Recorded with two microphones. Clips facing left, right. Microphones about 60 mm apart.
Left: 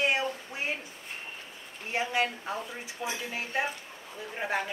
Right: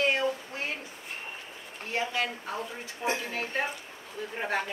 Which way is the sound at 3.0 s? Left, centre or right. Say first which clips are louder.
Right 5 dB; centre.